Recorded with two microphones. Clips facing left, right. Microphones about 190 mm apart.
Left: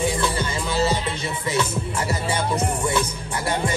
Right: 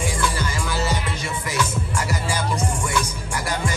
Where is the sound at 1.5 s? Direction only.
25° left (ahead or behind).